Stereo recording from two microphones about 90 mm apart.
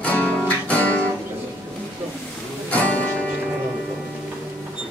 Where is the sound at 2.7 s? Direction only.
15° left (ahead or behind).